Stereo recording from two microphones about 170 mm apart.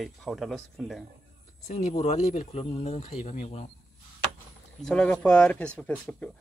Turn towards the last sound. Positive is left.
turn(degrees=5)  # may be behind; listen again after turning